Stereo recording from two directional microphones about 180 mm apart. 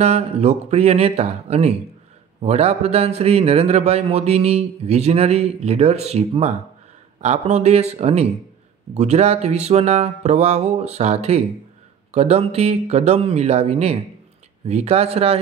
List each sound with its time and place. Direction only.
0.0 s a man's voice: 35° right (ahead or behind)